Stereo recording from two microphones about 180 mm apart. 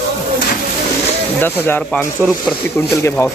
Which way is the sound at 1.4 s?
10° left (ahead or behind).